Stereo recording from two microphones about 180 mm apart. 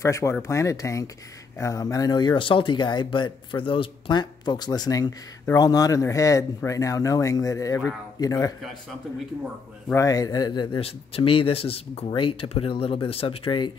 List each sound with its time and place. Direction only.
0.0 s speech: 15° left (ahead or behind)
9.9 s speech: 20° left (ahead or behind)